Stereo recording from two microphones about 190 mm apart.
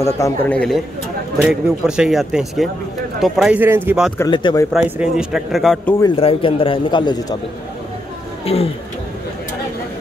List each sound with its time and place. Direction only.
0.0 s a man's voice: 10° left (ahead or behind); by 4.1 s 5° right (ahead or behind)
4.3 s a man's voice: 25° left (ahead or behind)
4.7 s speech: 10° right (ahead or behind)
5.9 s a man's voice: 25° left (ahead or behind)
8.5 s speech: 30° left (ahead or behind)